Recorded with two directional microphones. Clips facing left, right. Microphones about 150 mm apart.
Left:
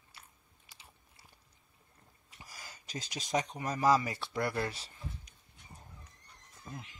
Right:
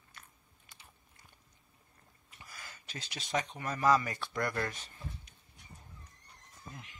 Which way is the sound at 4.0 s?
25° left (ahead or behind).